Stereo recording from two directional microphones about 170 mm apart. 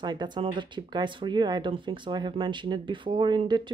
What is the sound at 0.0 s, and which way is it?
Speech, 25° right (ahead or behind).